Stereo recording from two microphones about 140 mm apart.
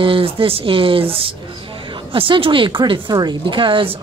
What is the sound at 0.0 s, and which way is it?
Speech, 40° right (ahead or behind).